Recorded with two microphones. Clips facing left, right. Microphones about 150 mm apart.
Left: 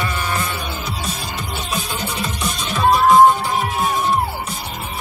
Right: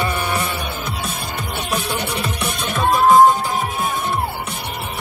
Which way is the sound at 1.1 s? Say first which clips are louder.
Even; 60° right (ahead or behind).